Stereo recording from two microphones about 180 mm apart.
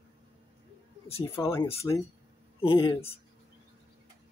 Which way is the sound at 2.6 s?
30° left (ahead or behind).